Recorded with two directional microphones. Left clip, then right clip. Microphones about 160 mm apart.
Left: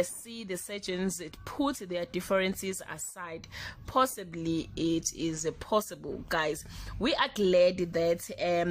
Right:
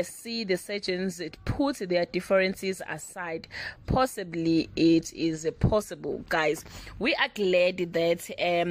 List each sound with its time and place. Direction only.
0.0 s speech: 25° right (ahead or behind)